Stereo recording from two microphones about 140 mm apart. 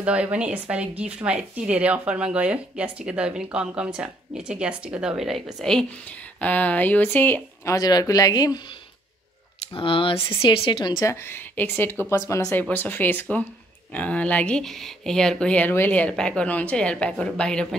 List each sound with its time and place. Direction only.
0.0 s speech: 10° right (ahead or behind); by 8.5 s 25° left (ahead or behind)
9.8 s speech: 40° left (ahead or behind)
11.0 s speech: 20° left (ahead or behind)